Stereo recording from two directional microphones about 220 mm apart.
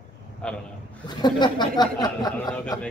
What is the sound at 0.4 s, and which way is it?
Speech, 5° left (ahead or behind).